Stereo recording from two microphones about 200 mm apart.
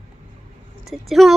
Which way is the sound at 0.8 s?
Centre (ahead or behind).